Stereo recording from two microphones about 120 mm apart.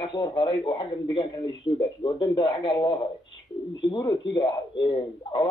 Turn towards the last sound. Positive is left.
turn(degrees=40)  # may be behind; listen again after turning